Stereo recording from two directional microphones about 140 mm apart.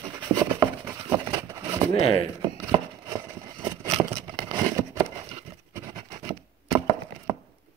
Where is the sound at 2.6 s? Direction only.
25° right (ahead or behind).